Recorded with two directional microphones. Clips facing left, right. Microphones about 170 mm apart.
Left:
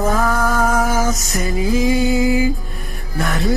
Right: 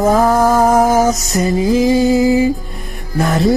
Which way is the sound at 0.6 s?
35° right (ahead or behind).